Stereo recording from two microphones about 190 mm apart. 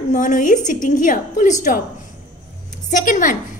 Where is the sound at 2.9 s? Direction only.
45° left (ahead or behind).